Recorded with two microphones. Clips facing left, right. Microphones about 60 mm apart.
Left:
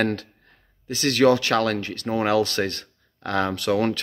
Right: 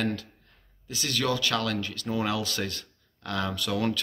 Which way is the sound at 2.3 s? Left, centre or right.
Left.